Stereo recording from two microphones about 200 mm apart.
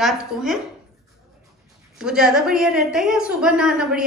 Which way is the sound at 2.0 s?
5° right (ahead or behind).